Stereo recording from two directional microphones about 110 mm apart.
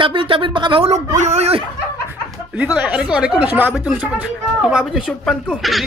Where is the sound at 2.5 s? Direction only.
15° right (ahead or behind).